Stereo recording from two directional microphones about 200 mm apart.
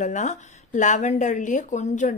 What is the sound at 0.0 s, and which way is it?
Speech, 35° left (ahead or behind).